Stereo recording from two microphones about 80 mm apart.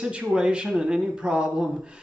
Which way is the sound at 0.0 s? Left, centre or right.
Centre.